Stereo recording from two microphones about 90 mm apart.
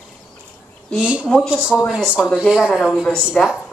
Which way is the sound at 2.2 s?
5° right (ahead or behind).